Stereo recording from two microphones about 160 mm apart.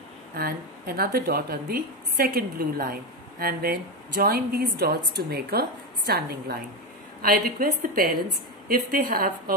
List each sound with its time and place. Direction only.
0.4 s a woman's voice: 75° right (ahead or behind)
7.2 s a woman's voice: 65° right (ahead or behind)